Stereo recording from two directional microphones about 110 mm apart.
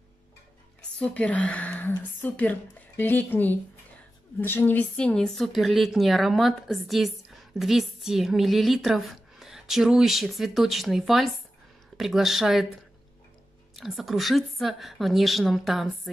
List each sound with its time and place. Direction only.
0.9 s a woman's voice: 10° left (ahead or behind)
13.7 s a woman's voice: centre (ahead or behind)